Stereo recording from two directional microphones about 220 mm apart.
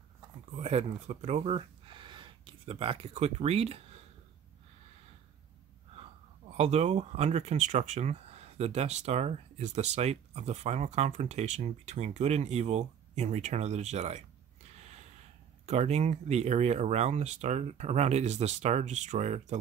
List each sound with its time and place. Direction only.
0.6 s speech: 30° right (ahead or behind)
6.5 s speech: 30° right (ahead or behind)
14.7 s snort: 30° right (ahead or behind)
15.6 s speech: 30° right (ahead or behind)